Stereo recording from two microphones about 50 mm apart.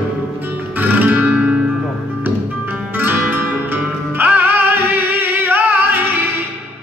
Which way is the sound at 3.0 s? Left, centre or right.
Right.